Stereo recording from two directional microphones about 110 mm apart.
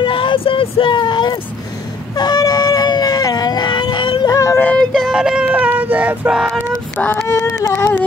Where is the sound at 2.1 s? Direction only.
35° left (ahead or behind).